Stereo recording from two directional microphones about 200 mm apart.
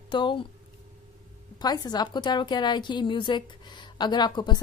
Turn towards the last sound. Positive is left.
turn(degrees=20)  # may be behind; listen again after turning